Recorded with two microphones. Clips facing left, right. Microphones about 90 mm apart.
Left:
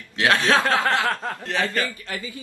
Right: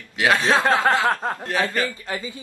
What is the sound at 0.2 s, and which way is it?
A man's voice, 15° right (ahead or behind).